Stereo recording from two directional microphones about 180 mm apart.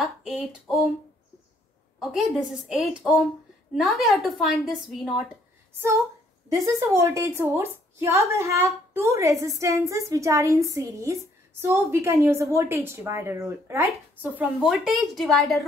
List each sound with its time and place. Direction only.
0.0 s a woman's voice: centre (ahead or behind)
2.0 s a woman's voice: centre (ahead or behind)
6.5 s a woman's voice: 15° right (ahead or behind); by 15.6 s centre (ahead or behind)